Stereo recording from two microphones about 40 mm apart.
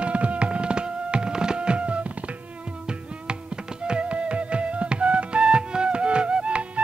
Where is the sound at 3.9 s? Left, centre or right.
Right.